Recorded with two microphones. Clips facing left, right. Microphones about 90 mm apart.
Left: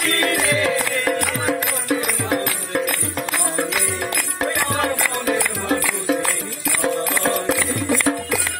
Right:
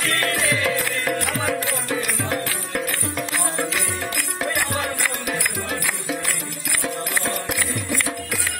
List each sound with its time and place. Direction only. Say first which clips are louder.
0.7 s music: left 3 dB; 25° left (ahead or behind)
6.8 s music: left 6 dB; 80° left